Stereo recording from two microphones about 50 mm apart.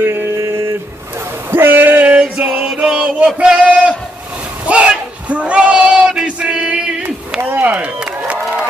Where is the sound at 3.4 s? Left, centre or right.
Centre.